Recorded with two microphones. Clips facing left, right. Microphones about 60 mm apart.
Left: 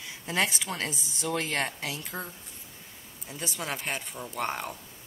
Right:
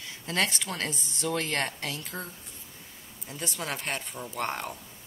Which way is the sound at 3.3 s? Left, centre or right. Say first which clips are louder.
Even; centre.